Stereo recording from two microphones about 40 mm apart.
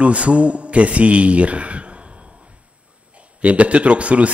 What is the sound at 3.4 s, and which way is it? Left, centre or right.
Speech, right.